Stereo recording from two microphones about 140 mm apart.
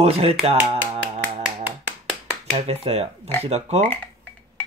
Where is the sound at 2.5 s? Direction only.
45° right (ahead or behind).